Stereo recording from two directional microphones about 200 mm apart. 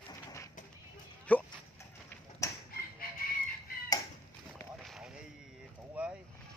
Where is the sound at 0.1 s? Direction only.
15° left (ahead or behind).